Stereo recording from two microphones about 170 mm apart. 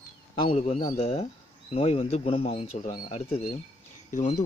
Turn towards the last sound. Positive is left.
turn(degrees=45)  # may be behind; listen again after turning